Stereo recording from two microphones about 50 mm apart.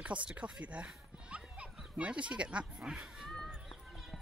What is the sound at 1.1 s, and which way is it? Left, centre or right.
Music, right.